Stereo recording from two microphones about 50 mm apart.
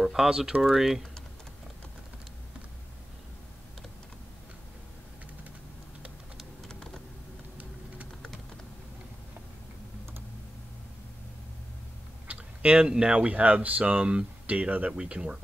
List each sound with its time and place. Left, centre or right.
0.0 s speech: centre
6.7 s computer keyboard: centre
12.3 s speech: right
14.9 s speech: centre